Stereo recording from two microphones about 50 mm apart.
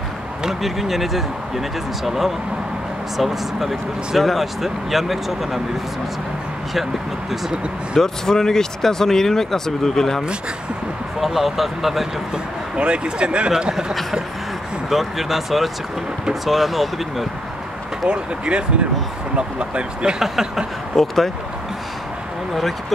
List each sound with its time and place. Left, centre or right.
0.4 s speech: centre
6.7 s speech: centre
8.0 s speech: centre
11.1 s speech: centre
12.7 s speech: centre
18.0 s speech: right
20.2 s a sound: centre
20.9 s speech: centre
22.5 s speech: centre